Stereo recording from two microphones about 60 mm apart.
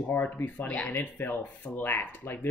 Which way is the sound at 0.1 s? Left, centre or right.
Left.